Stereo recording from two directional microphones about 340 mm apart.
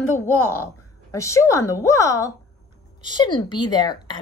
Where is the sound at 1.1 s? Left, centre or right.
Centre.